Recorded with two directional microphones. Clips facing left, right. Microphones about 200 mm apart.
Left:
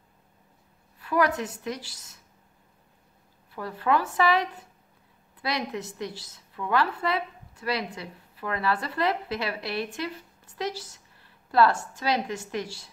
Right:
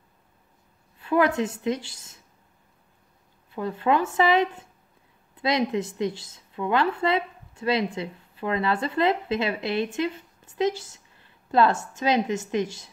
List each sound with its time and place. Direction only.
0.9 s a woman's voice: 25° right (ahead or behind)
3.5 s a woman's voice: 20° right (ahead or behind)